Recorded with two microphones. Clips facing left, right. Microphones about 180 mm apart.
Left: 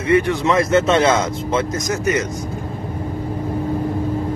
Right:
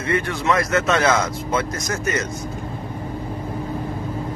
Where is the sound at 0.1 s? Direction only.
20° left (ahead or behind).